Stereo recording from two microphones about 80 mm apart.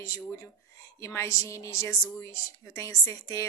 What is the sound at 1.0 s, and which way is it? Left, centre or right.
A woman's voice, left.